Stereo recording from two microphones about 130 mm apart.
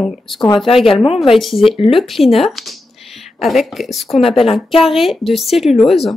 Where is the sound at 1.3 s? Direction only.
Centre (ahead or behind).